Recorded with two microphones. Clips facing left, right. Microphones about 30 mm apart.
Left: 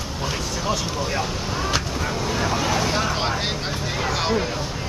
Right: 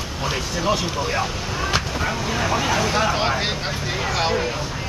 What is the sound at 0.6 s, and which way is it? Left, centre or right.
Speech, centre.